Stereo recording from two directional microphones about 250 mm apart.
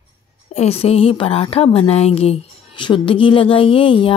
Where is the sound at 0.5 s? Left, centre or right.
Left.